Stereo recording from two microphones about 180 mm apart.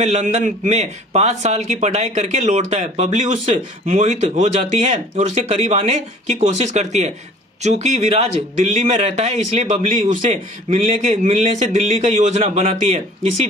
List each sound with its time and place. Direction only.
0.0 s speech: 40° right (ahead or behind)